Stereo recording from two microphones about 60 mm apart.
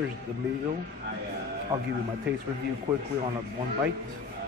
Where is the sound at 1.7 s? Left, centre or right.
Right.